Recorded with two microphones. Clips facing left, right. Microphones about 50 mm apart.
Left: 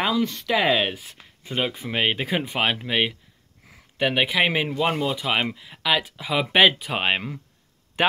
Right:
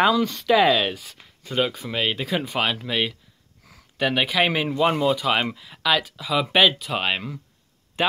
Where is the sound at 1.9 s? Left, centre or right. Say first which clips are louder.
Left 1 dB; left.